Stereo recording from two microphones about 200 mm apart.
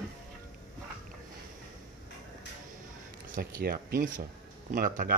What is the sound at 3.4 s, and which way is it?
Speech, 45° right (ahead or behind).